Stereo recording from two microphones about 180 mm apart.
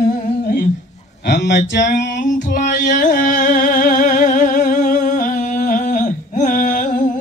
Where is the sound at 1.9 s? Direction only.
45° left (ahead or behind).